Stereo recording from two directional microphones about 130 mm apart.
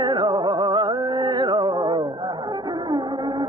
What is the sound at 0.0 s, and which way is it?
Music, 35° right (ahead or behind).